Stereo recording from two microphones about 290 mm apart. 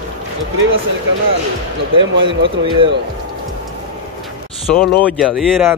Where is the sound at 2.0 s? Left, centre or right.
Right.